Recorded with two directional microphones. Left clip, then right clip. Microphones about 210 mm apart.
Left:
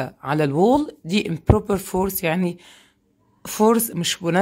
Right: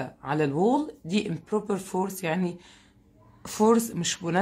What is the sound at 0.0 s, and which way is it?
Speech, 45° left (ahead or behind).